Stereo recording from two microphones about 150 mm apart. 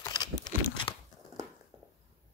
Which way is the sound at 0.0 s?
25° left (ahead or behind).